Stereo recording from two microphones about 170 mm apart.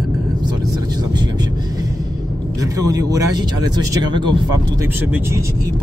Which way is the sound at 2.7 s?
20° right (ahead or behind).